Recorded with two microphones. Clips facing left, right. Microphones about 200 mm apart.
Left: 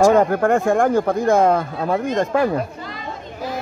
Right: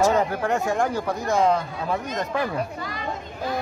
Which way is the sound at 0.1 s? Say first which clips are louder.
Left 7 dB; 50° left (ahead or behind).